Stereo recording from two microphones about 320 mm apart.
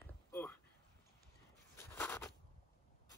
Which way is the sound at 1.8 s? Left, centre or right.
Centre.